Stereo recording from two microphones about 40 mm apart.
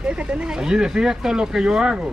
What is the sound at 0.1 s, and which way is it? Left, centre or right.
Speech, right.